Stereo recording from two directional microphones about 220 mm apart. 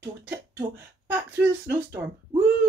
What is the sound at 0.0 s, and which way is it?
Speech, 10° right (ahead or behind).